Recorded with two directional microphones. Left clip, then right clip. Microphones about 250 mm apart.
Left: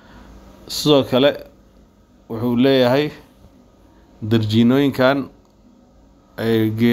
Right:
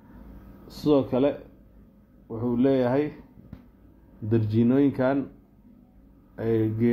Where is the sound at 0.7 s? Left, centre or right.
Left.